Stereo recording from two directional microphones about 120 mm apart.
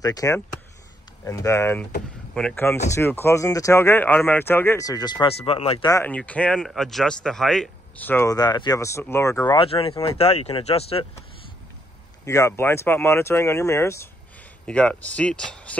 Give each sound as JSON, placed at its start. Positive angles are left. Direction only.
{"t": 0.0, "sound": "speech", "side_deg": 30}
{"t": 2.3, "sound": "speech", "side_deg": 5}
{"t": 2.9, "sound": "speech", "side_deg": 20}
{"t": 4.8, "sound": "speech", "side_deg": 35}
{"t": 5.3, "sound": "speech", "side_deg": 55}
{"t": 6.0, "sound": "speech", "side_deg": 10}
{"t": 8.0, "sound": "speech", "side_deg": 15}
{"t": 8.3, "sound": "speech", "side_deg": 35}
{"t": 9.5, "sound": "speech", "side_deg": 50}
{"t": 12.3, "sound": "speech", "side_deg": 25}
{"t": 14.7, "sound": "speech", "side_deg": 10}